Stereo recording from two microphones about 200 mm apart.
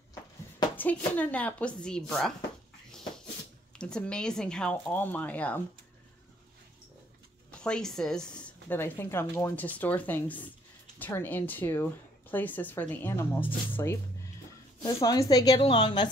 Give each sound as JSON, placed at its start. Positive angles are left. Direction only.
{"t": 0.7, "sound": "speech", "side_deg": 10}
{"t": 3.7, "sound": "speech", "side_deg": 5}
{"t": 7.5, "sound": "a woman's voice", "side_deg": 5}